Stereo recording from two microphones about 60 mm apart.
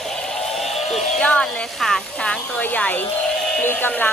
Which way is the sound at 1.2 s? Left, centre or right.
Centre.